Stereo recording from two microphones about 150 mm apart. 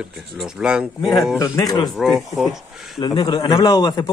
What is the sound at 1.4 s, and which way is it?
Speech, 25° left (ahead or behind).